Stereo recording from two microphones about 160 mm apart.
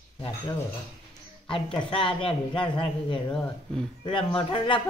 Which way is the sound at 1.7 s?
35° left (ahead or behind).